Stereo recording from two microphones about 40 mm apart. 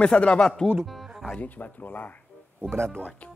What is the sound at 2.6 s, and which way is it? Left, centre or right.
Speech, right.